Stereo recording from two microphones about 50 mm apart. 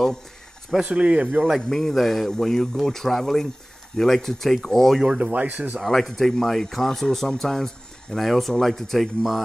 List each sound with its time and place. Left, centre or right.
0.8 s speech: right
1.7 s speech: centre
5.0 s speech: centre
5.3 s speech: right
5.8 s speech: centre